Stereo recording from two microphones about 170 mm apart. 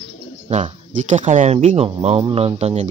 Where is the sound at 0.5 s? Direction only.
45° right (ahead or behind).